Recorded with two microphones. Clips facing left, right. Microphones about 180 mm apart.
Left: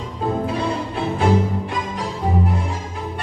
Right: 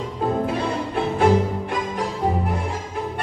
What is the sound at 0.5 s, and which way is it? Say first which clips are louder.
Music: left 1 dB; 50° right (ahead or behind).